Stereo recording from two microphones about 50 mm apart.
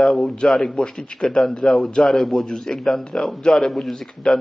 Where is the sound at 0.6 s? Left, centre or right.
Centre.